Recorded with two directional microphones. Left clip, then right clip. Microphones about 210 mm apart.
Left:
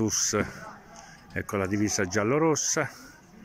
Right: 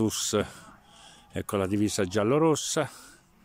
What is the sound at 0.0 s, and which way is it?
Speech, 20° right (ahead or behind).